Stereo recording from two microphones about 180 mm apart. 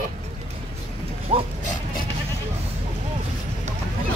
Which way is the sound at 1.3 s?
35° right (ahead or behind).